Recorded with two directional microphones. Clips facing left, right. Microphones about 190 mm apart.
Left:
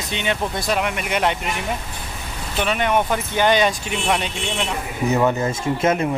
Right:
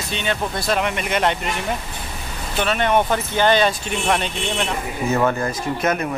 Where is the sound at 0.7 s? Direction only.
5° left (ahead or behind).